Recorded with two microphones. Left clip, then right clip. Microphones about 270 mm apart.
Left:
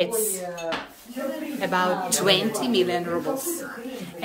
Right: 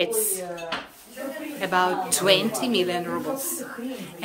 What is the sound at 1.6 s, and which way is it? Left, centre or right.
A woman's voice, centre.